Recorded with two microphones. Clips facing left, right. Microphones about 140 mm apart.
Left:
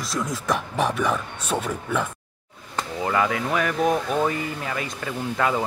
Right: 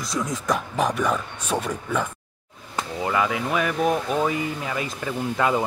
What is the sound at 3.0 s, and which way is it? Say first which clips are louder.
Speech: left 1 dB; centre (ahead or behind).